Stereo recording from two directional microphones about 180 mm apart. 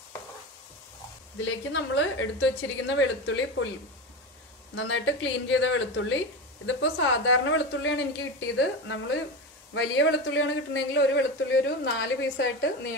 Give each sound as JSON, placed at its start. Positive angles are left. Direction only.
{"t": 1.4, "sound": "speech", "side_deg": 90}
{"t": 4.7, "sound": "speech", "side_deg": 90}